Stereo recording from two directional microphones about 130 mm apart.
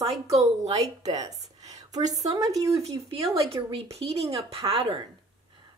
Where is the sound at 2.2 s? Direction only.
25° right (ahead or behind).